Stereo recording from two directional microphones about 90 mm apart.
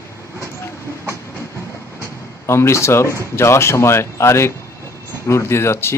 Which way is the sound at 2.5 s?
30° left (ahead or behind).